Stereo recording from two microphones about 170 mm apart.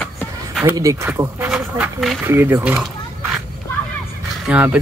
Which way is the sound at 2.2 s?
15° right (ahead or behind).